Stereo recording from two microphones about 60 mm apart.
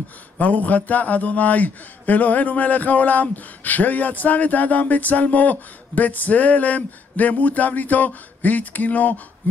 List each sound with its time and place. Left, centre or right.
0.4 s speech: left